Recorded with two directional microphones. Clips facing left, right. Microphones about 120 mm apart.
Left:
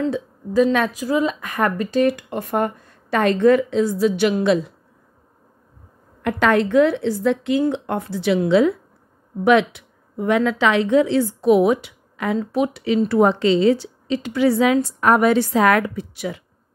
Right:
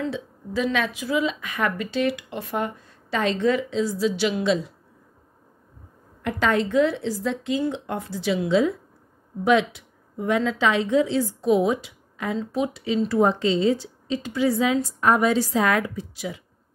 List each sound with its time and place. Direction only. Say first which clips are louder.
0.0 s a woman's voice: left 6 dB; 45° left (ahead or behind)
6.2 s a woman's voice: left 5 dB; 65° left (ahead or behind)